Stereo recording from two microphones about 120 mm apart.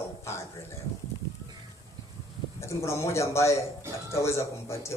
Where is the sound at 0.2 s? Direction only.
20° left (ahead or behind).